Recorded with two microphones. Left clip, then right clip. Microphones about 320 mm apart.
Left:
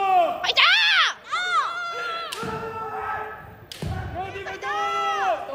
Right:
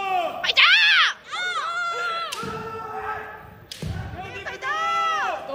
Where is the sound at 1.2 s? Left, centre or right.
Centre.